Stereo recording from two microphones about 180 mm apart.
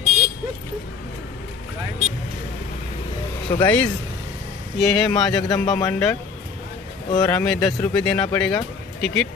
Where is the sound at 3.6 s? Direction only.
5° left (ahead or behind).